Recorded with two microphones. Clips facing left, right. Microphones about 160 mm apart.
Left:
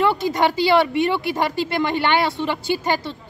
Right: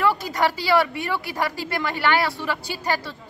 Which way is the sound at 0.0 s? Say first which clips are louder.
Left 3 dB; 25° left (ahead or behind).